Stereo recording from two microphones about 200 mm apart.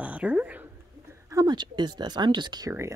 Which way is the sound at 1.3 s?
20° right (ahead or behind).